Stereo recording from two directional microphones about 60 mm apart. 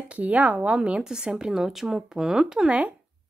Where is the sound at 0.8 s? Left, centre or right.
Centre.